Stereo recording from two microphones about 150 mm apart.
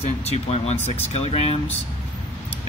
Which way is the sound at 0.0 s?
45° left (ahead or behind).